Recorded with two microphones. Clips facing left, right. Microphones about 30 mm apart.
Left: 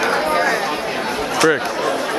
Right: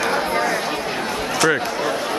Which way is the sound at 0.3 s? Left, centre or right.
Left.